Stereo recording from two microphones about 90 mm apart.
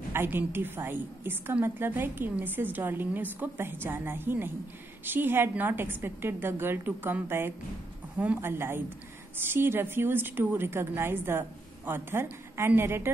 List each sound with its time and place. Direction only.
0.1 s a woman's voice: 25° right (ahead or behind)